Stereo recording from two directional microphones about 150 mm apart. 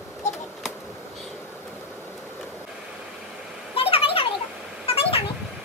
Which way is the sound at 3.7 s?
40° left (ahead or behind).